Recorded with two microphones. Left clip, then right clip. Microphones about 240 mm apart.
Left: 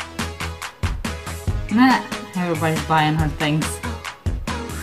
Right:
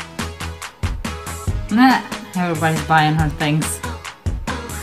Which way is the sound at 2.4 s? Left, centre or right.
Centre.